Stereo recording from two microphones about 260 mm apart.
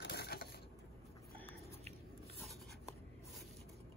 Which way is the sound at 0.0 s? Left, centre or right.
Left.